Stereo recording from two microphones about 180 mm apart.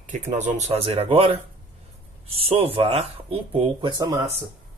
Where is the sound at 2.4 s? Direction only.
30° right (ahead or behind).